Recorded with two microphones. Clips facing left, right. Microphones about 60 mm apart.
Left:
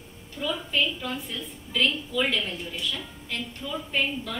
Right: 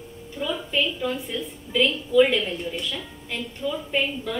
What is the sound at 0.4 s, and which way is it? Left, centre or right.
A woman's voice, centre.